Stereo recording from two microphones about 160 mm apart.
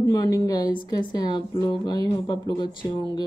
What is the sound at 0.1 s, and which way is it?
A woman's voice, 25° left (ahead or behind).